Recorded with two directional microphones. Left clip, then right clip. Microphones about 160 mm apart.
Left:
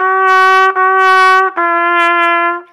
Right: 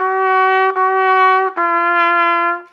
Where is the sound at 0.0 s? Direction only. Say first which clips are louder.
Left 5 dB; 20° left (ahead or behind).